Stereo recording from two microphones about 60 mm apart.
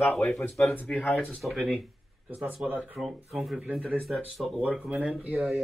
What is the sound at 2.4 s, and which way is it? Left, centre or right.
Speech, right.